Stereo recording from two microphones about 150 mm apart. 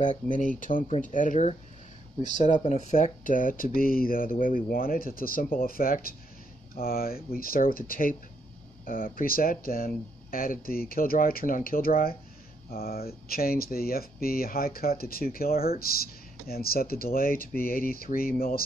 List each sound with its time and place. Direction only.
0.0 s speech: 55° left (ahead or behind)
0.8 s speech: 55° left (ahead or behind); by 12.2 s 75° left (ahead or behind)
12.7 s speech: 90° left